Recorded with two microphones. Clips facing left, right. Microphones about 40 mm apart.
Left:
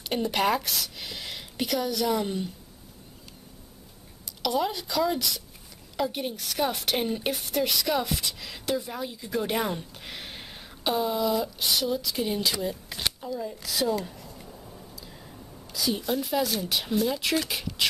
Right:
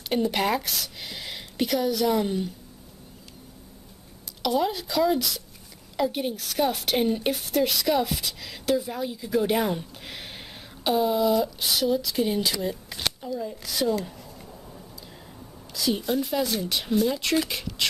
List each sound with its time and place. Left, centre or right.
0.1 s a woman's voice: centre
4.4 s a woman's voice: centre